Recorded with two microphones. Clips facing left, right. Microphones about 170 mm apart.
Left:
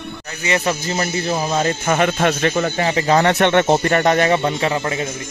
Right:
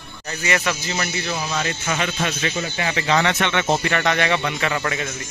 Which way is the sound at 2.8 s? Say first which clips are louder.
Left 4 dB; 35° left (ahead or behind).